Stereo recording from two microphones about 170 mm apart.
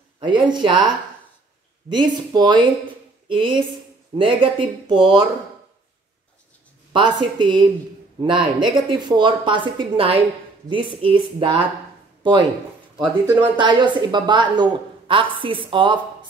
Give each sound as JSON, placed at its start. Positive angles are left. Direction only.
{"t": 0.2, "sound": "a woman's voice", "side_deg": -25}
{"t": 1.9, "sound": "a woman's voice", "side_deg": -25}
{"t": 6.9, "sound": "a woman's voice", "side_deg": -25}
{"t": 13.0, "sound": "speech", "side_deg": -10}
{"t": 13.6, "sound": "a woman's voice", "side_deg": -25}